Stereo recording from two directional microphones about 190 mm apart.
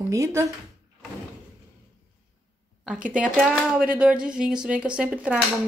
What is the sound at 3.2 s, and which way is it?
Speech, centre (ahead or behind).